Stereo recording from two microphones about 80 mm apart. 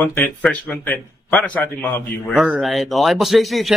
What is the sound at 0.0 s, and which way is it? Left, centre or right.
A man's voice, left.